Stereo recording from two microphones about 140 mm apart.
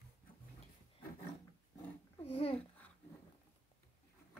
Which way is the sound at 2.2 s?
45° left (ahead or behind).